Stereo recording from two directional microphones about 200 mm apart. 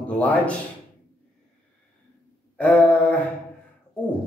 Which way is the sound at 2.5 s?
5° left (ahead or behind).